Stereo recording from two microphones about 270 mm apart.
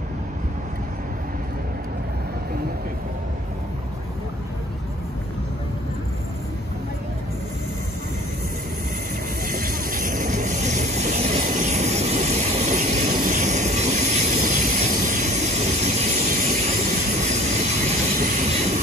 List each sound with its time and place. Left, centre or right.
9.4 s vehicle: right
17.2 s train: right